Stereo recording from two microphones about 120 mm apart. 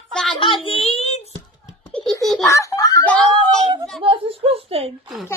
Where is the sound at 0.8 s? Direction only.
60° left (ahead or behind).